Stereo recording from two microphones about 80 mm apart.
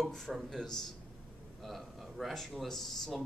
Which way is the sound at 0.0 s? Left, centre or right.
Centre.